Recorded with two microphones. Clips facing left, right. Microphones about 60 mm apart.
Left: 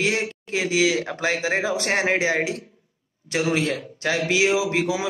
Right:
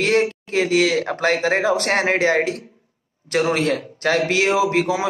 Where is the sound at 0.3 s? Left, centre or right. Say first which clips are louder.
Right 5 dB; right.